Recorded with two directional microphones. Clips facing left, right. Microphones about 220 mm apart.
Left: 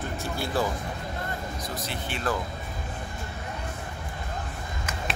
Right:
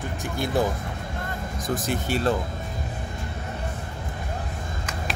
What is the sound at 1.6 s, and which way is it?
Speech, 50° right (ahead or behind).